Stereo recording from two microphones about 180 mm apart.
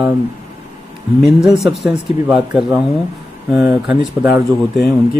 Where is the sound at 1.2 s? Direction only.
Centre (ahead or behind).